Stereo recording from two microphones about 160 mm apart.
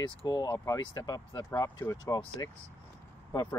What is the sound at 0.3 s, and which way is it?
Speech, 20° left (ahead or behind).